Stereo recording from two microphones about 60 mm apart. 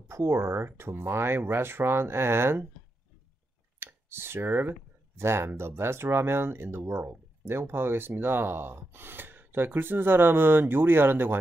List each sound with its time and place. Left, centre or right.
0.1 s speech: right
3.8 s speech: right